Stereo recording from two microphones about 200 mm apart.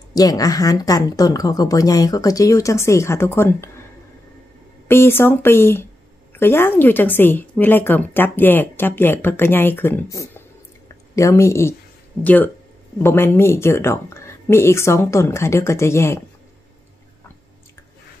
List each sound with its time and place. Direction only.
0.1 s a woman's voice: 20° left (ahead or behind)
4.8 s a woman's voice: 10° left (ahead or behind)